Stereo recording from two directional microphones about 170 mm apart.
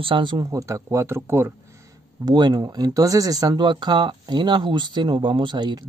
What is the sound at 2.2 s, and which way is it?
Speech, 25° right (ahead or behind).